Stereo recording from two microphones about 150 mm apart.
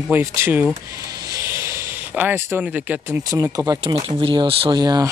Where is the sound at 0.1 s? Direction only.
15° right (ahead or behind).